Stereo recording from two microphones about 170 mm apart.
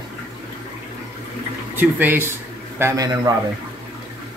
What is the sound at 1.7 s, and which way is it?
Speech, 10° right (ahead or behind).